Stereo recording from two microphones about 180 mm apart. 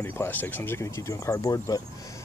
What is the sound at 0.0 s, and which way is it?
Speech, 10° left (ahead or behind).